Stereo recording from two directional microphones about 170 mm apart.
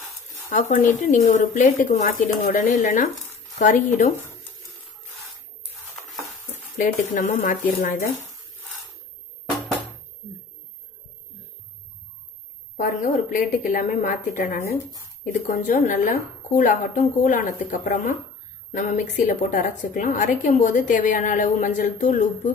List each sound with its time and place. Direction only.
0.5 s a woman's voice: 45° left (ahead or behind)
6.8 s a woman's voice: 45° left (ahead or behind)
12.7 s a woman's voice: 50° left (ahead or behind)